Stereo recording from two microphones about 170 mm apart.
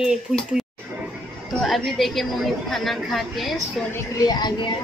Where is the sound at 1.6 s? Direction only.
Centre (ahead or behind).